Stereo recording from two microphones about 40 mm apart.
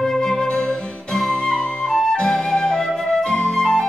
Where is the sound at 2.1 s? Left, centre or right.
Centre.